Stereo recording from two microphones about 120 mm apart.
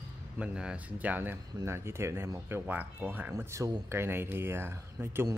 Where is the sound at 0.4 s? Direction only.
10° right (ahead or behind).